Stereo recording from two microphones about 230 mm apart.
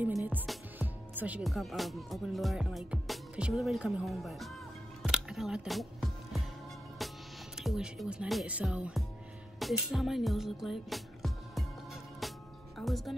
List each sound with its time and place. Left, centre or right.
0.0 s speech: centre
5.0 s music: centre
7.5 s speech: centre
9.6 s music: centre
12.7 s speech: centre